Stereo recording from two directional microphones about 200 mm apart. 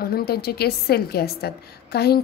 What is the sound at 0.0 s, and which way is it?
A woman's voice, 50° left (ahead or behind).